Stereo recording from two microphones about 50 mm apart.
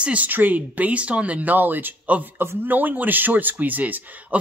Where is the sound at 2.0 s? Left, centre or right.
Right.